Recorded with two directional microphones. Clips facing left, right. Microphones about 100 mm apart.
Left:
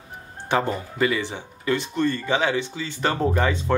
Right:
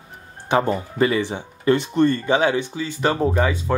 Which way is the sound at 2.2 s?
20° right (ahead or behind).